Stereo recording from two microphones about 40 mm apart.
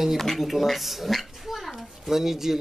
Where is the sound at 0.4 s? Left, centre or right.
Centre.